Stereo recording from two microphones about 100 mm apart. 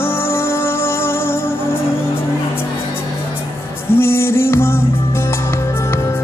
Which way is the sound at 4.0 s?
25° left (ahead or behind).